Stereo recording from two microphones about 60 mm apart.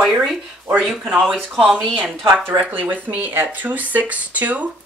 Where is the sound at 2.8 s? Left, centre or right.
Right.